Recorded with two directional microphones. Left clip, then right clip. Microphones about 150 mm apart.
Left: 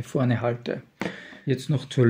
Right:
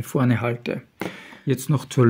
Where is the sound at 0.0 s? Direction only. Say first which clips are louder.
Right 2 dB; 45° right (ahead or behind).